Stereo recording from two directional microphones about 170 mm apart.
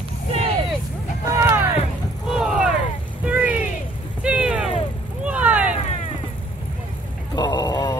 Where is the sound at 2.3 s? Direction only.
5° right (ahead or behind).